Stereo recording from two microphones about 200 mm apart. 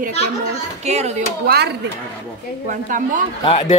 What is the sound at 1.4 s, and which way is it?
Speech, 55° right (ahead or behind).